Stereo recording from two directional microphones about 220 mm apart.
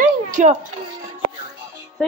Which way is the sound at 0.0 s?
35° right (ahead or behind).